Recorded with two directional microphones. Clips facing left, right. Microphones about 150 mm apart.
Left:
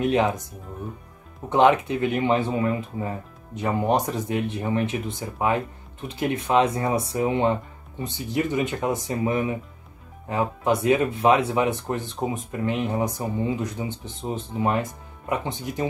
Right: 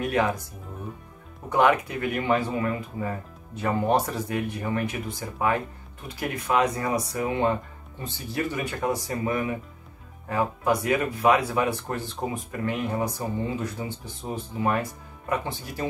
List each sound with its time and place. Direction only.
0.0 s speech: 20° left (ahead or behind)
1.5 s speech: 25° left (ahead or behind)